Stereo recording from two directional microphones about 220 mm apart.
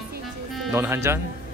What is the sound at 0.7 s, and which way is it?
Speech, 10° right (ahead or behind).